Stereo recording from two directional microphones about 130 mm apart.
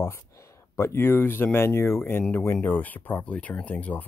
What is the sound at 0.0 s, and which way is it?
Speech, 20° left (ahead or behind).